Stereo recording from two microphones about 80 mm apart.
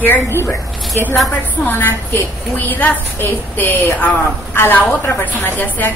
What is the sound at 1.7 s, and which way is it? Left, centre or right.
A woman's voice, left.